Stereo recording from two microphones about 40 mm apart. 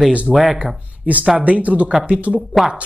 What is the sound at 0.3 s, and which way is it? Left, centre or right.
Speech, centre.